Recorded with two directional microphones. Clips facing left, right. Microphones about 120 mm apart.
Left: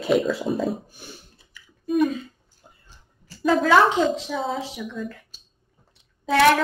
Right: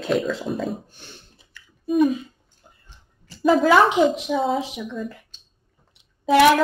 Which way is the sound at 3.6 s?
15° right (ahead or behind).